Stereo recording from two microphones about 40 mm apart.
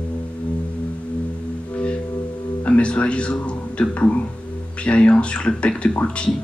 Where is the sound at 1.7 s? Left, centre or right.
Left.